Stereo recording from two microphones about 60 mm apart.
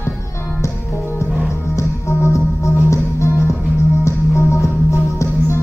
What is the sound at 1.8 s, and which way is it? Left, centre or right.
Music, left.